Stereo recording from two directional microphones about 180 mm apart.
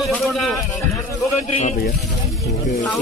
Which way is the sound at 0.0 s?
Centre (ahead or behind).